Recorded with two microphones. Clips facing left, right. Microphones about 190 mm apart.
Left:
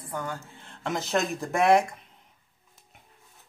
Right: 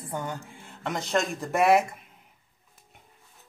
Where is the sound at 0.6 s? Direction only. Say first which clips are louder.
Left 2 dB; 5° right (ahead or behind).